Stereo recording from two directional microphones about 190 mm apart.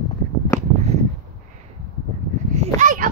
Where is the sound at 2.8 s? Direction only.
45° right (ahead or behind).